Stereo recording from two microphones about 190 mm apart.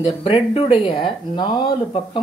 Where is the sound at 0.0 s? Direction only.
30° left (ahead or behind).